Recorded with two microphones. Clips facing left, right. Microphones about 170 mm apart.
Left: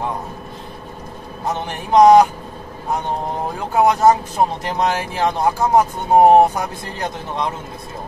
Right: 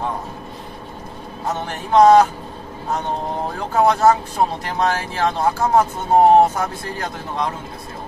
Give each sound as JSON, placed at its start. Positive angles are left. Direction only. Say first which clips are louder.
{"t": 1.7, "sound": "speech", "louder": "left 1 dB", "side_deg": 15}
{"t": 3.7, "sound": "speech", "louder": "left 1 dB", "side_deg": 15}